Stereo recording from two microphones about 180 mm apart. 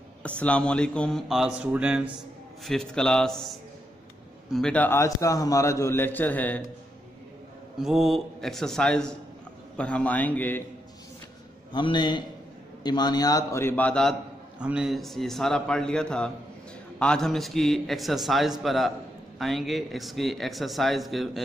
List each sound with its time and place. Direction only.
0.2 s a man's voice: 5° left (ahead or behind)
7.7 s a man's voice: centre (ahead or behind)
11.7 s a man's voice: 25° left (ahead or behind); by 14.1 s 5° left (ahead or behind)
14.6 s a man's voice: 5° right (ahead or behind)